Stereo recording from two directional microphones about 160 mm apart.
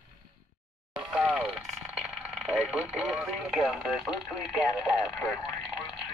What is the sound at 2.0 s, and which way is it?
Vehicle, centre (ahead or behind).